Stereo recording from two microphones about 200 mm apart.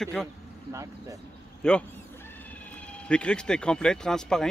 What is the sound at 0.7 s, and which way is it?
Vehicle, 15° right (ahead or behind).